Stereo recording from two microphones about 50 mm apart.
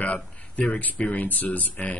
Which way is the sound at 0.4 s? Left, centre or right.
Left.